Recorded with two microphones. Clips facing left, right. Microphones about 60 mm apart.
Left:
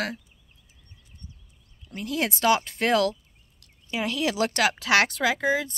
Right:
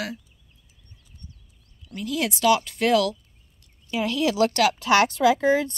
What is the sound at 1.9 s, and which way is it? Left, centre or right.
Speech, left.